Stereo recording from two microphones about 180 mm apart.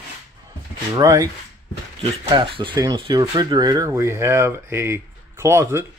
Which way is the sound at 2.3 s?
30° right (ahead or behind).